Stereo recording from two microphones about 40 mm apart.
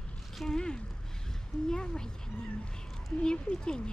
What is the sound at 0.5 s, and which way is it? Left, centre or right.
Speech, left.